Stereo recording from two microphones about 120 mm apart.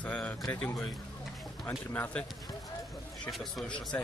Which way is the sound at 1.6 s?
15° left (ahead or behind).